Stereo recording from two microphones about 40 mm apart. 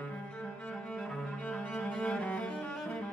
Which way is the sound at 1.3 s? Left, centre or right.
Left.